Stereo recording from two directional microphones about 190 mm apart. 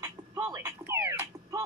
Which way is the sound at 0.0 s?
15° right (ahead or behind).